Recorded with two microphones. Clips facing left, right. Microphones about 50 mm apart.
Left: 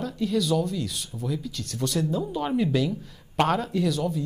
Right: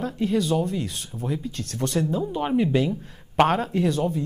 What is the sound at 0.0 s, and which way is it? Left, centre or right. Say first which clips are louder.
Speech: right 2 dB; right.